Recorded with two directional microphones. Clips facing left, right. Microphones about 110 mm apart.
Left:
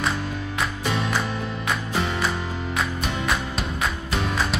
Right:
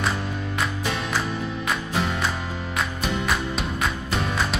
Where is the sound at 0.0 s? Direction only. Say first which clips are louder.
Even; centre (ahead or behind).